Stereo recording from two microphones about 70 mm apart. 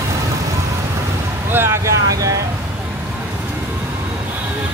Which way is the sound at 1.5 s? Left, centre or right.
Right.